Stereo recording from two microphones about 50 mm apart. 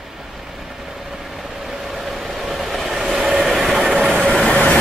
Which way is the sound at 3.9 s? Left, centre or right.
Centre.